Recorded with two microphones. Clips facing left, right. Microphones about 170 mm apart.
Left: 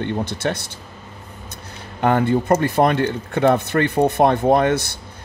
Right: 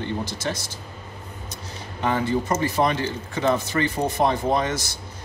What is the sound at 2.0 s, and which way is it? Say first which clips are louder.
Speech: left 6 dB; 55° left (ahead or behind).